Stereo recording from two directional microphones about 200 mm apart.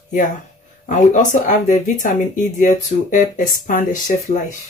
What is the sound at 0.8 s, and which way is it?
Speech, 40° left (ahead or behind).